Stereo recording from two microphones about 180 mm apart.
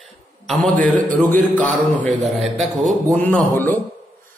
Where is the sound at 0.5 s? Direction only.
5° left (ahead or behind).